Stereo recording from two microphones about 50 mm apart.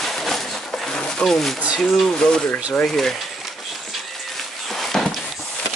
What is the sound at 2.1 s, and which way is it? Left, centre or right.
Speech, centre.